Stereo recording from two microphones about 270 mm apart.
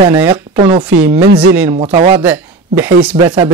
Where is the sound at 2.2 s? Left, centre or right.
Centre.